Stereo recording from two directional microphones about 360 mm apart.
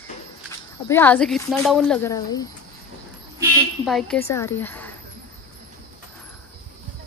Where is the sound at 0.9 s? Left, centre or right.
Centre.